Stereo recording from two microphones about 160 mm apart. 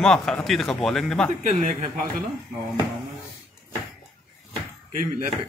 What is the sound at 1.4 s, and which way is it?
Speech, 50° right (ahead or behind).